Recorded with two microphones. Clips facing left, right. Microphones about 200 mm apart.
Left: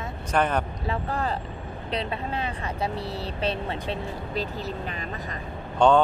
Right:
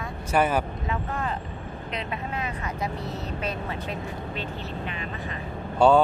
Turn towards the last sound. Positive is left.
turn(degrees=-5)  # may be behind; listen again after turning